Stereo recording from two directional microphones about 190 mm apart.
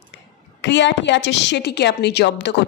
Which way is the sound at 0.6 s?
70° left (ahead or behind).